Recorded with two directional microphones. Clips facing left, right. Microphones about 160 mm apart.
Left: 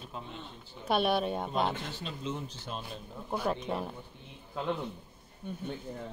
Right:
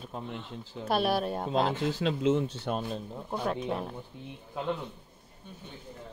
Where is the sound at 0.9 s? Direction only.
Centre (ahead or behind).